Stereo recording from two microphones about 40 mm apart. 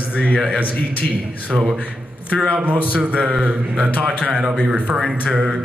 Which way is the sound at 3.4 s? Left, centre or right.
Right.